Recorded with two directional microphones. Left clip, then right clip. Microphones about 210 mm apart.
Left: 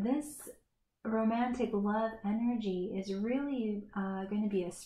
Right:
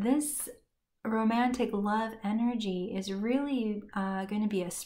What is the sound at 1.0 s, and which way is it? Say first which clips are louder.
Speech: right 4 dB; 25° right (ahead or behind).